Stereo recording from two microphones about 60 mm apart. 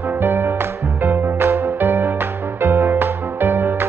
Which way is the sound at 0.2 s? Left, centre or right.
Right.